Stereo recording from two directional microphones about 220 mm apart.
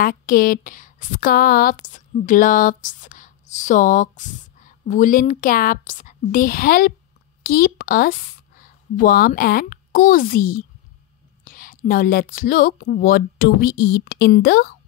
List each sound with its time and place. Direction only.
0.0 s a woman's voice: 40° left (ahead or behind)